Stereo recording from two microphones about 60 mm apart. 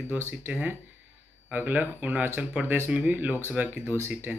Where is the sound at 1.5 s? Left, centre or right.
Right.